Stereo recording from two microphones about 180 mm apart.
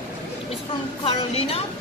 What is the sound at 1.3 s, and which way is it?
Speech, 35° left (ahead or behind).